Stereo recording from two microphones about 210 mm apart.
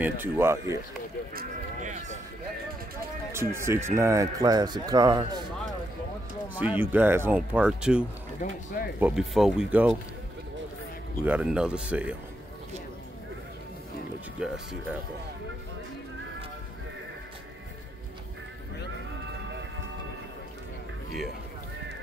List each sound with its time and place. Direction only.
0.0 s speech: 10° right (ahead or behind)
1.3 s sheep: 40° right (ahead or behind)
3.3 s speech: 10° right (ahead or behind)
6.5 s speech: 5° right (ahead or behind)
9.0 s speech: centre (ahead or behind)
11.2 s speech: 5° right (ahead or behind)
14.4 s speech: 5° right (ahead or behind)